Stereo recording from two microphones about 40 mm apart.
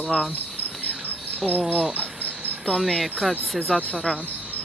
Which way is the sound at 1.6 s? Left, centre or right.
Centre.